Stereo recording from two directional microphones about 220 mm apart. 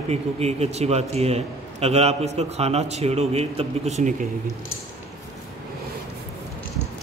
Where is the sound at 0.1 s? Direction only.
30° right (ahead or behind).